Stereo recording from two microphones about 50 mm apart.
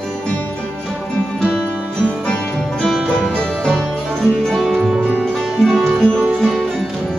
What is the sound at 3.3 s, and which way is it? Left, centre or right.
Music, centre.